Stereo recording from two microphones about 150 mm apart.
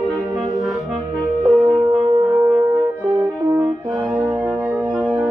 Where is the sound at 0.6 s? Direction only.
Centre (ahead or behind).